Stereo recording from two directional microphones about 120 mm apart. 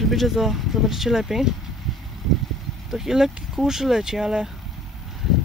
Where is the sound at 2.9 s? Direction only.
5° right (ahead or behind).